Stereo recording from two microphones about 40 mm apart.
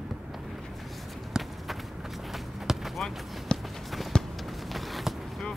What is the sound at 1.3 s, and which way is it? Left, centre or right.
Run, centre.